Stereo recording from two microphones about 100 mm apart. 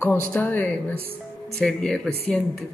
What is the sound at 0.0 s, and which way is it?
Speech, 20° left (ahead or behind).